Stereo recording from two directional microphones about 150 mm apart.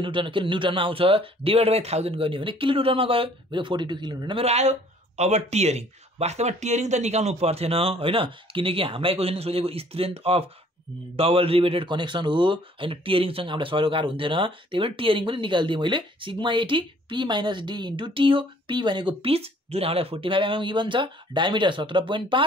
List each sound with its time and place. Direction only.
0.0 s speech: 35° right (ahead or behind)
4.5 s speech: 50° right (ahead or behind)